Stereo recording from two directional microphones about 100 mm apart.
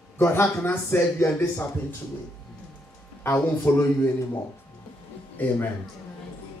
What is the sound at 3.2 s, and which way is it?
A man's voice, 20° left (ahead or behind).